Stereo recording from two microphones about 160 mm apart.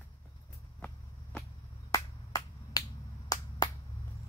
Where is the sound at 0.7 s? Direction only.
10° left (ahead or behind).